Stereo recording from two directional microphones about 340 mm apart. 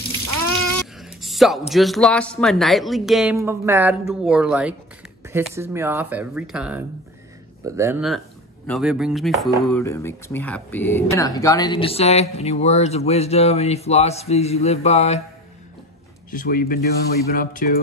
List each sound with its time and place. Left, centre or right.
0.9 s a sound: centre
1.7 s speech: centre
16.3 s speech: left